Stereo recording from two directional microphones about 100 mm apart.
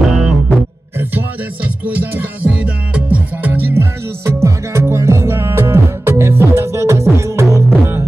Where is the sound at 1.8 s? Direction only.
15° right (ahead or behind).